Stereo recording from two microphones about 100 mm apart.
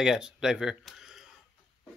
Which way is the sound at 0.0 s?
5° right (ahead or behind).